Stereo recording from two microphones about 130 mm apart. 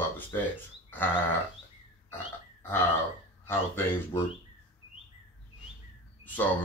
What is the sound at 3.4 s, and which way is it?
Speech, 15° left (ahead or behind).